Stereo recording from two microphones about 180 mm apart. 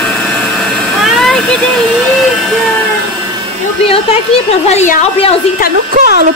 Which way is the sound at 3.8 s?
30° left (ahead or behind).